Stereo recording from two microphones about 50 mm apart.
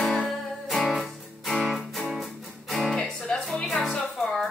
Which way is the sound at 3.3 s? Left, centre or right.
Left.